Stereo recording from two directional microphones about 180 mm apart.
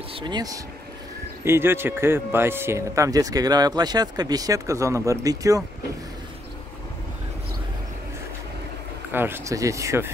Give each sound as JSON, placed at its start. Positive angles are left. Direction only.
{"t": 0.1, "sound": "speech", "side_deg": -25}
{"t": 9.1, "sound": "speech", "side_deg": -10}